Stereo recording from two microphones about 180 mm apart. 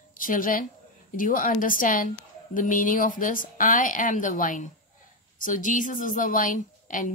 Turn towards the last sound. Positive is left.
turn(degrees=45)  # may be behind; listen again after turning